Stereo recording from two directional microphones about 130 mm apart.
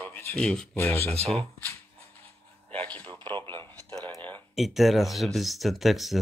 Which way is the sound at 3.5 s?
15° left (ahead or behind).